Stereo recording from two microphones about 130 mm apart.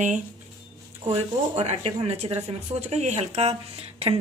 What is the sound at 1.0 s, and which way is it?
A woman's voice, 50° right (ahead or behind).